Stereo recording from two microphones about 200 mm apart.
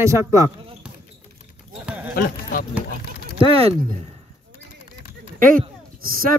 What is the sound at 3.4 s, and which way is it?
Speech, 30° right (ahead or behind).